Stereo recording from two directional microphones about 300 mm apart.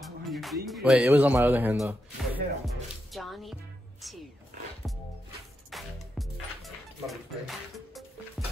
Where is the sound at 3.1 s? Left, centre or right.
Centre.